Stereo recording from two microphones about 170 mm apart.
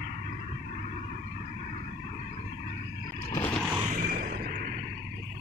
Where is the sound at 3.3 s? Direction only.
15° left (ahead or behind).